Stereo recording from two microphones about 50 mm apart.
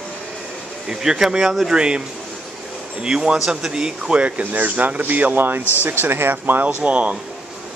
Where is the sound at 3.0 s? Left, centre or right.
Centre.